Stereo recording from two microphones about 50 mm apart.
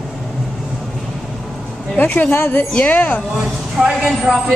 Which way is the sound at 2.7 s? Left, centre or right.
Left.